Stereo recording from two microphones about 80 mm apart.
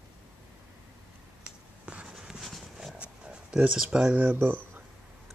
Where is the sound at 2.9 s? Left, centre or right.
Centre.